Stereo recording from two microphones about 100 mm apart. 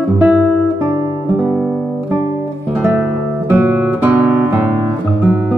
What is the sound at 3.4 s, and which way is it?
Guitar, 25° right (ahead or behind).